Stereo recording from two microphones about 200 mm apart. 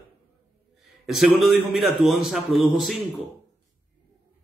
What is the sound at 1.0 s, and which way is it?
A man's voice, centre (ahead or behind).